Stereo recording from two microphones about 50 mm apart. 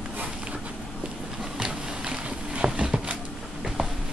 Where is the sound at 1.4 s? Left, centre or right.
Centre.